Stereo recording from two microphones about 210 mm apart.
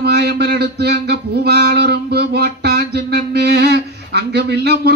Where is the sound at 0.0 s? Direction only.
50° right (ahead or behind).